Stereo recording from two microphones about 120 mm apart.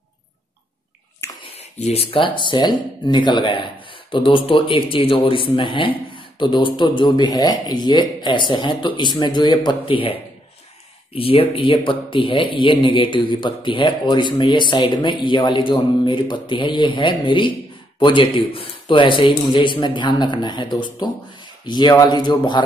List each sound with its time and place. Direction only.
1.4 s speech: 60° left (ahead or behind)
11.1 s speech: 50° left (ahead or behind)